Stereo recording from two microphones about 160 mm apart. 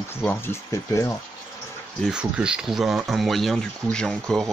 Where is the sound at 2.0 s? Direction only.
5° right (ahead or behind).